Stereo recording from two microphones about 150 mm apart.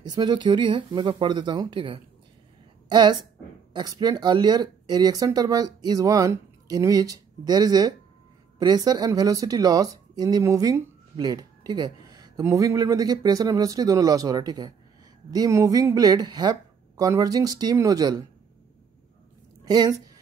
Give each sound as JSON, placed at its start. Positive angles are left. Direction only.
{"t": 0.0, "sound": "a woman's voice", "side_deg": -30}
{"t": 19.6, "sound": "a woman's voice", "side_deg": -25}